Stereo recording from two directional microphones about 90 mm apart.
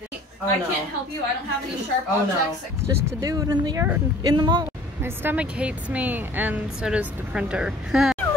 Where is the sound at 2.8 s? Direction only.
35° right (ahead or behind).